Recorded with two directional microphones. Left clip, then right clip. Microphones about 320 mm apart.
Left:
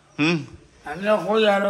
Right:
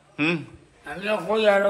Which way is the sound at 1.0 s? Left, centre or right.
Left.